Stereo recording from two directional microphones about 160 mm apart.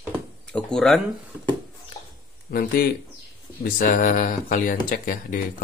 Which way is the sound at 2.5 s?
75° left (ahead or behind).